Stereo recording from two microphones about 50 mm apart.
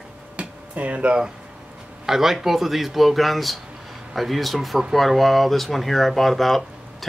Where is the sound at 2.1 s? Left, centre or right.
Centre.